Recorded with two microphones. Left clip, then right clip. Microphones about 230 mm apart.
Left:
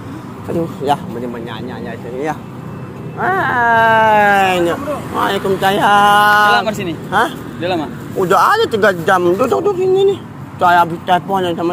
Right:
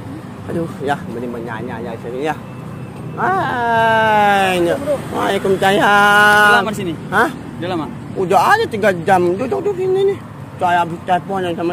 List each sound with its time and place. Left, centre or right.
0.9 s speech: centre
3.2 s speech: centre; by 5.7 s right
5.7 s speech: right
7.1 s speech: right
7.6 s speech: right
8.2 s speech: centre
9.4 s speech: centre